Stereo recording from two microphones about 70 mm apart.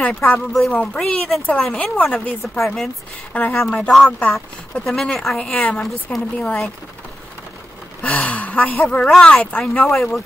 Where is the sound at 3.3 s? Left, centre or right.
Left.